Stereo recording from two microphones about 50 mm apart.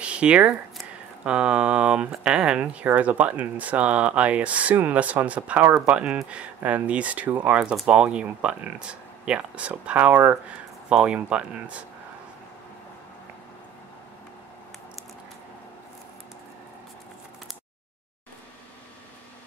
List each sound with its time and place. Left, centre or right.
0.0 s speech: right